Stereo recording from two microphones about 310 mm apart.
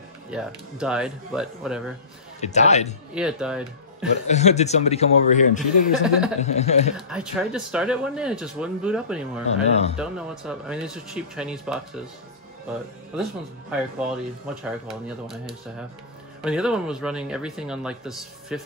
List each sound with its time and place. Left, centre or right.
0.3 s speech: centre
2.4 s speech: left
3.2 s speech: centre
4.3 s speech: left
7.0 s speech: centre
9.7 s speech: left
9.9 s speech: centre
13.1 s speech: centre